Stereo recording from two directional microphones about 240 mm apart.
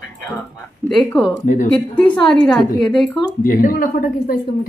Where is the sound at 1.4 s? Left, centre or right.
Left.